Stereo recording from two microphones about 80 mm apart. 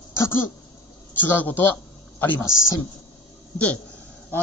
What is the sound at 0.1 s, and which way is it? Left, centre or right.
Throat clearing, left.